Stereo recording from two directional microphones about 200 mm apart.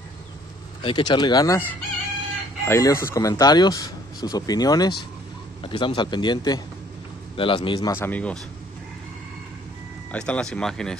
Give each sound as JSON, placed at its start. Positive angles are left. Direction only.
{"t": 0.8, "sound": "speech", "side_deg": 25}
{"t": 2.6, "sound": "speech", "side_deg": 15}
{"t": 10.1, "sound": "speech", "side_deg": 5}